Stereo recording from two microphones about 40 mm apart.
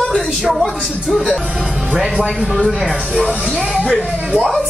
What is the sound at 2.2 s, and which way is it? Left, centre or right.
Speech, centre.